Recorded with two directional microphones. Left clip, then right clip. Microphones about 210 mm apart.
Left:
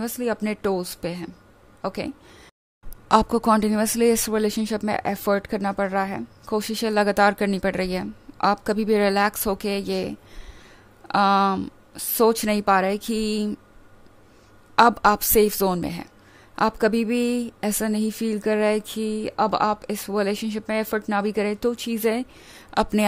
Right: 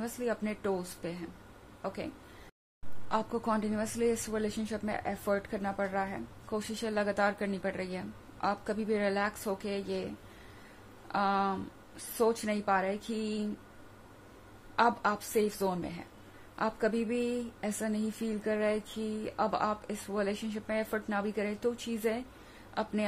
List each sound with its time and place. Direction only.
0.0 s a woman's voice: 50° left (ahead or behind)
3.1 s a woman's voice: 50° left (ahead or behind)
14.8 s a woman's voice: 55° left (ahead or behind)